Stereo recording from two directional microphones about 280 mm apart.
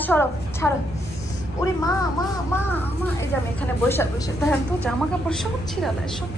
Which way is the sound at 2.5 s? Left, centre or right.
Centre.